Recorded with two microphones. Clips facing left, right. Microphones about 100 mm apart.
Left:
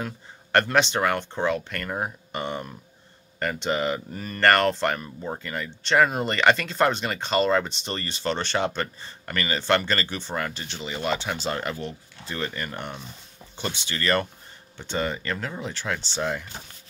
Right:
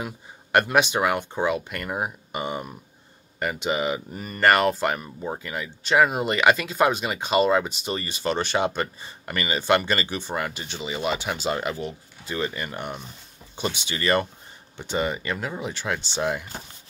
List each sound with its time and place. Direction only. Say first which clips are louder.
0.0 s speech: even; 10° right (ahead or behind)